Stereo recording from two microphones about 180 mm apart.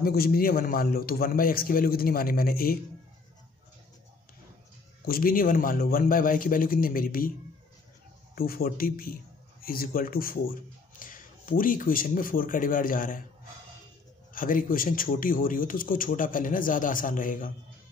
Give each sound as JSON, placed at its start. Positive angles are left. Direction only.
{"t": 0.0, "sound": "a man's voice", "side_deg": 55}
{"t": 5.0, "sound": "speech", "side_deg": 55}
{"t": 8.4, "sound": "a man's voice", "side_deg": 55}
{"t": 14.3, "sound": "speech", "side_deg": 50}